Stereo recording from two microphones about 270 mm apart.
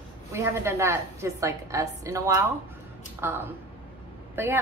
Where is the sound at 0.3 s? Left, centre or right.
Centre.